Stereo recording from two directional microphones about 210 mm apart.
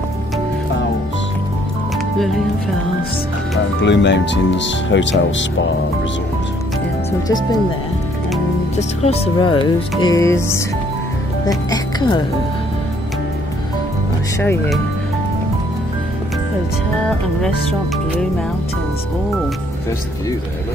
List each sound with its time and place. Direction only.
3.8 s speech: 55° left (ahead or behind)
8.7 s speech: 30° left (ahead or behind)